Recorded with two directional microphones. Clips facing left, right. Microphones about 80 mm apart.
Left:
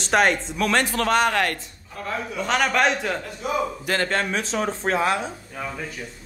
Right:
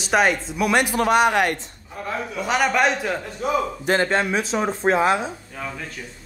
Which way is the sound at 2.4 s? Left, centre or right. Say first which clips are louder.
Right 1 dB; centre.